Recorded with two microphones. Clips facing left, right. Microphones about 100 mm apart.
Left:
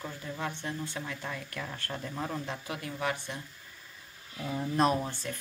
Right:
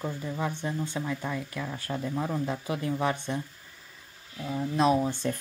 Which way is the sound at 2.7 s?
25° right (ahead or behind).